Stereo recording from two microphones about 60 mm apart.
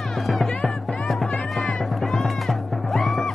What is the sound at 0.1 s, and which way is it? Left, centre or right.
Music, centre.